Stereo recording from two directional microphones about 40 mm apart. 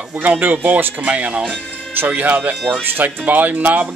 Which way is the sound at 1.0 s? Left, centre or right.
Right.